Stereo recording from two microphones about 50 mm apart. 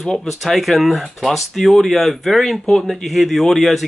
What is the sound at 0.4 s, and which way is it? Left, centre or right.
Speech, centre.